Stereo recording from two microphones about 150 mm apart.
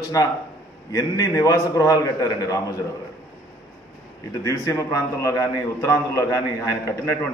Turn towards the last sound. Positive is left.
turn(degrees=15)  # may be behind; listen again after turning